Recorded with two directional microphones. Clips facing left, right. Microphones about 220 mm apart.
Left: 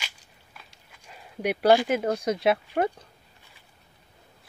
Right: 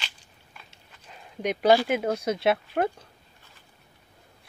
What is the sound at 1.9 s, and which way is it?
Speech, centre (ahead or behind).